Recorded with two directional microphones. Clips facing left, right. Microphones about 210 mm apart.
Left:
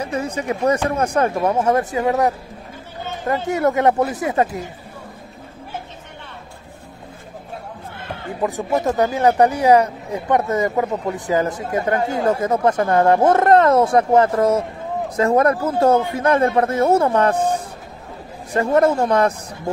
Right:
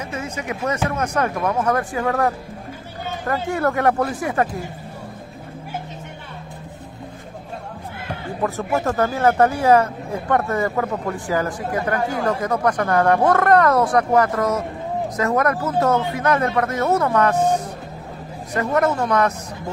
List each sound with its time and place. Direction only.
0.0 s speech: 35° left (ahead or behind)
8.4 s speech: 15° left (ahead or behind)
18.5 s speech: 30° left (ahead or behind)